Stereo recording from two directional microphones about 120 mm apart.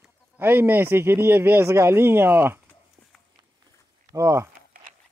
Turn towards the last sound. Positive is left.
turn(degrees=-25)  # may be behind; listen again after turning